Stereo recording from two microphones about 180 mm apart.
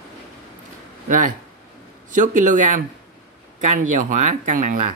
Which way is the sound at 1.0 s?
45° right (ahead or behind).